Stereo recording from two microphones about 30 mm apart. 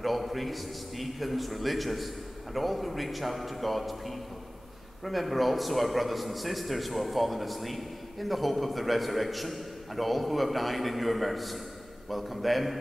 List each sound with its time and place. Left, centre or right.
0.0 s a man's voice: centre